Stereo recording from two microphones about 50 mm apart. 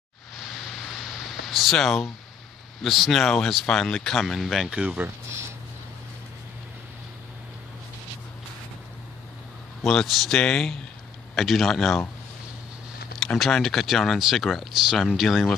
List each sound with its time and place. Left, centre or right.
1.5 s speech: centre
4.3 s speech: centre
4.6 s speech: right
9.8 s speech: centre
11.3 s speech: centre
13.4 s speech: centre